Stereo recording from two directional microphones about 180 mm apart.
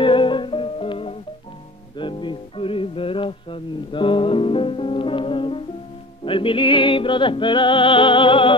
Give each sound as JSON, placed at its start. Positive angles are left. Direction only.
{"t": 0.0, "sound": "music", "side_deg": 30}